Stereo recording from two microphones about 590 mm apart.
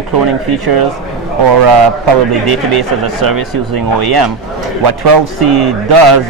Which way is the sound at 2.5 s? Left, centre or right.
Right.